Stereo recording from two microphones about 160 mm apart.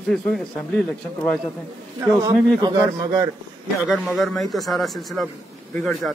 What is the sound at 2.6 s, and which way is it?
Speech, 25° right (ahead or behind).